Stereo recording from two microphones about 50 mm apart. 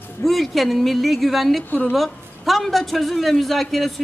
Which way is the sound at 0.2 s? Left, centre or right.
Centre.